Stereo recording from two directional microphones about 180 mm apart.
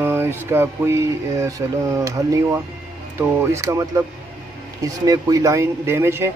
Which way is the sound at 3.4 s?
15° right (ahead or behind).